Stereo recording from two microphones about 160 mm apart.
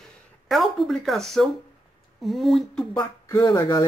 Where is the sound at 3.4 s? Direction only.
30° left (ahead or behind).